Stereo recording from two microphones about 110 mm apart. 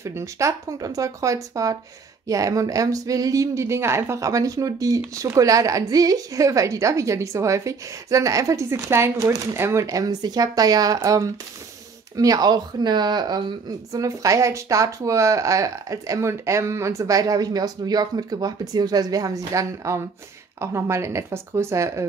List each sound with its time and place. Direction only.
0.0 s speech: 25° right (ahead or behind)